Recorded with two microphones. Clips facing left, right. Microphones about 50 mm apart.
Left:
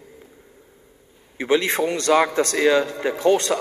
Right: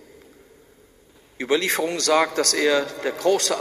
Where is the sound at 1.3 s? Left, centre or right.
Left.